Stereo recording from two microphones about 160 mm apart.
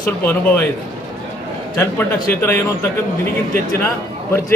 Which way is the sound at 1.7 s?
15° left (ahead or behind).